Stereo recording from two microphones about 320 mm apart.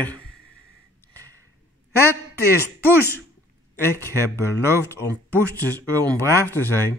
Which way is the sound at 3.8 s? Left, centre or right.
Centre.